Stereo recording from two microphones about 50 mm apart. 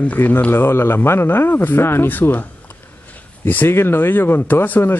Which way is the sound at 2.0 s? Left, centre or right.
Left.